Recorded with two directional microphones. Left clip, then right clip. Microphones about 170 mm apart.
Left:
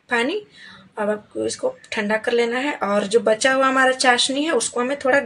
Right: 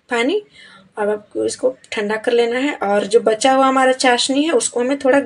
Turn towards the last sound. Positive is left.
turn(degrees=-15)  # may be behind; listen again after turning